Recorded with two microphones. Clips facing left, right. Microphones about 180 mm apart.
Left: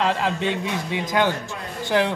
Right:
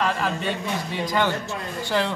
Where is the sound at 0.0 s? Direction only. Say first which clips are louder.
Left 2 dB; 25° left (ahead or behind).